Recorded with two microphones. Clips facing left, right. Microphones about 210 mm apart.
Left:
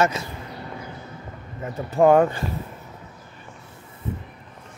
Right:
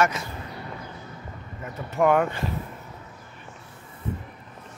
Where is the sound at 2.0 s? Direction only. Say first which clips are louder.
Left 5 dB; 30° left (ahead or behind).